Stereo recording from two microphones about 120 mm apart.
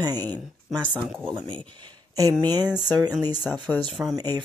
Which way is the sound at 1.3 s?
40° right (ahead or behind).